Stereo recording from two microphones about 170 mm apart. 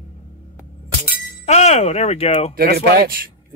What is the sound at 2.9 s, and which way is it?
Speech, 60° right (ahead or behind).